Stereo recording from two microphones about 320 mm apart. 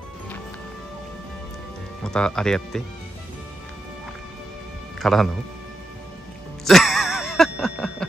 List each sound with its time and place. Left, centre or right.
2.0 s speech: centre
5.0 s speech: centre
6.6 s music: centre